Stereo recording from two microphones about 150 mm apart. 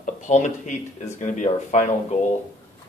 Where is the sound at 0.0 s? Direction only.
55° left (ahead or behind).